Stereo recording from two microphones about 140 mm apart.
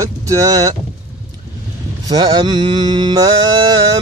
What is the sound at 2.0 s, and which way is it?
Mantra, 30° right (ahead or behind).